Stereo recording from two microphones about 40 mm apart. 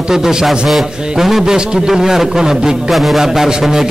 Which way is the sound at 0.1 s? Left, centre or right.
Centre.